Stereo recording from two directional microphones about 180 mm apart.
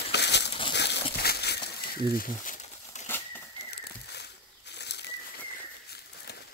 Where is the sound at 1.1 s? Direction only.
60° left (ahead or behind).